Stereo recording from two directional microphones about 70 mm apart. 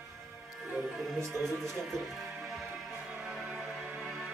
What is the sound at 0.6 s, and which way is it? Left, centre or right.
Music, centre.